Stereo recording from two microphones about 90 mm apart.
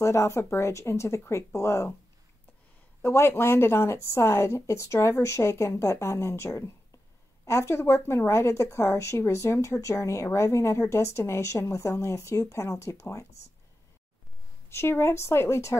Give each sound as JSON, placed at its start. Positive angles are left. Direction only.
{"t": 0.0, "sound": "a woman's voice", "side_deg": 30}
{"t": 3.0, "sound": "a woman's voice", "side_deg": 25}
{"t": 14.7, "sound": "speech", "side_deg": 30}